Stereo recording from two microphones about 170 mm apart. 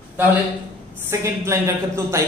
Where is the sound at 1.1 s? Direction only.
15° right (ahead or behind).